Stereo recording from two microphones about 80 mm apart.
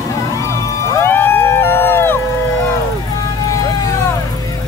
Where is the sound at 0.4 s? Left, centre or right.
Left.